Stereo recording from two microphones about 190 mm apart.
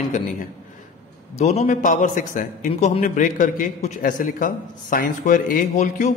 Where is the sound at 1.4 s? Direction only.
35° left (ahead or behind).